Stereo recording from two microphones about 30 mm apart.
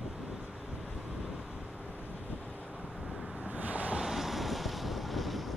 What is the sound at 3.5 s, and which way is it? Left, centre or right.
Vehicle, right.